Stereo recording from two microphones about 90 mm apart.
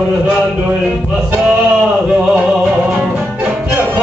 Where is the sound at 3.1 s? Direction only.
10° right (ahead or behind).